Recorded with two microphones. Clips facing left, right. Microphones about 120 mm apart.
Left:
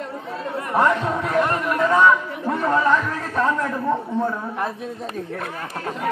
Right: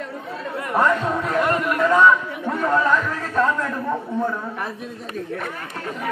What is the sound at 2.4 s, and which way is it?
Speech, 10° left (ahead or behind).